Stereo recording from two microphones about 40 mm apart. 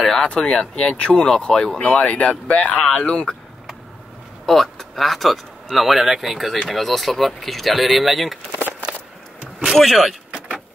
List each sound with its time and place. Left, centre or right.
0.0 s a sound: centre
0.3 s speech: centre
4.5 s speech: centre
9.8 s speech: centre